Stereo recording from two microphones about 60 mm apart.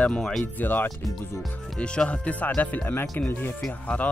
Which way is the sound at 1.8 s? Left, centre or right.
Centre.